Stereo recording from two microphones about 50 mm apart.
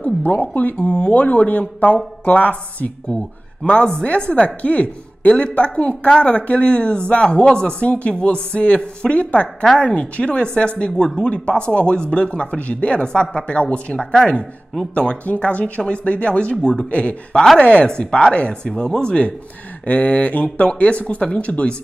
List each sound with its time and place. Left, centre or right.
0.2 s speech: left
3.6 s a woman's voice: left
19.8 s a woman's voice: left